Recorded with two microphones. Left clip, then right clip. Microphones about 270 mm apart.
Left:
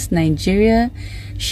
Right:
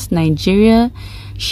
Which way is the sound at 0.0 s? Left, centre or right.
Right.